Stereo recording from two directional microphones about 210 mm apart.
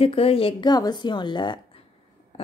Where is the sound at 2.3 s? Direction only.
30° left (ahead or behind).